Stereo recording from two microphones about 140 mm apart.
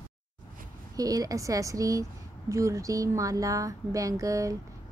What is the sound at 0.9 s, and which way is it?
A woman's voice, 25° right (ahead or behind).